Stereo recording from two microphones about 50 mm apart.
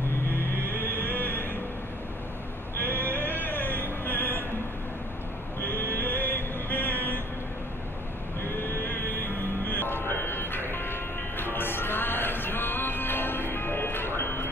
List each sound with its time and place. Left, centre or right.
0.7 s a sound: left
2.7 s music: left
5.6 s music: left
8.6 s music: left